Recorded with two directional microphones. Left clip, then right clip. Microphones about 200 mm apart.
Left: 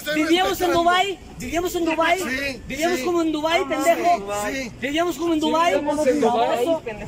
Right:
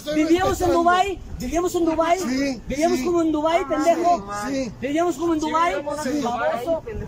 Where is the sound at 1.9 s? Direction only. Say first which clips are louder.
Left 2 dB; centre (ahead or behind).